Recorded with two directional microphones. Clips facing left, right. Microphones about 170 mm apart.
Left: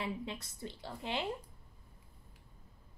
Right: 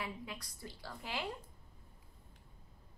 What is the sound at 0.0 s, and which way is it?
Speech, 25° left (ahead or behind).